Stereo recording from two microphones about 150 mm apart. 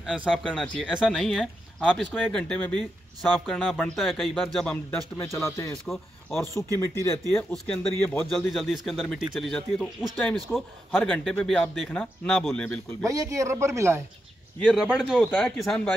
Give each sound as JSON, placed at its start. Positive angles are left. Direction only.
{"t": 0.0, "sound": "speech", "side_deg": -5}
{"t": 5.4, "sound": "a man's voice", "side_deg": 20}
{"t": 7.5, "sound": "speech", "side_deg": 5}
{"t": 10.9, "sound": "a man's voice", "side_deg": 10}
{"t": 13.0, "sound": "speech", "side_deg": -20}
{"t": 14.7, "sound": "speech", "side_deg": -5}